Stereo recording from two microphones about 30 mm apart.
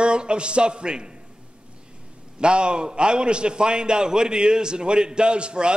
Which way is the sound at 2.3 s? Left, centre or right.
Right.